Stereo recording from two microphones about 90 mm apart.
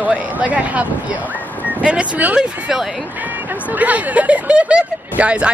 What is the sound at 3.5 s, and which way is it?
Speech, 20° right (ahead or behind).